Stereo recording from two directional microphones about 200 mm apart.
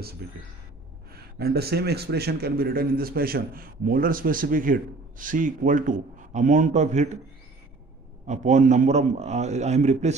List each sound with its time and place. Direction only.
0.2 s a man's voice: 50° right (ahead or behind); by 7.2 s 35° right (ahead or behind)
8.3 s a man's voice: 35° right (ahead or behind)